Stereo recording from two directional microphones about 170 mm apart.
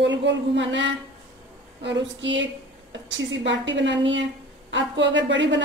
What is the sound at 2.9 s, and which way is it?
Speech, 90° right.